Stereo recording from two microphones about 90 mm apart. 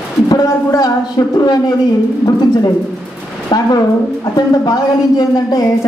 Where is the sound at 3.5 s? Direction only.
50° left (ahead or behind).